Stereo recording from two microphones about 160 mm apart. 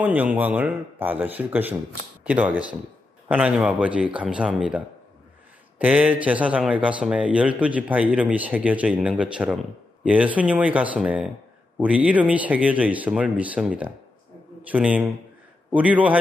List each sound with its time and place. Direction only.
0.0 s speech: 10° right (ahead or behind)